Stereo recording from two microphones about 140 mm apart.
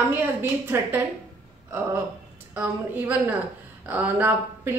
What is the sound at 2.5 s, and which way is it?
A woman's voice, 15° right (ahead or behind).